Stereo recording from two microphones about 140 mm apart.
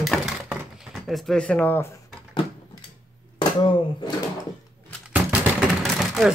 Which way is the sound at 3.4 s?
35° left (ahead or behind).